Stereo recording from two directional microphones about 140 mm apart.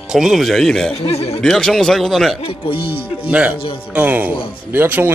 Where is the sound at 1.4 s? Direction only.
5° left (ahead or behind).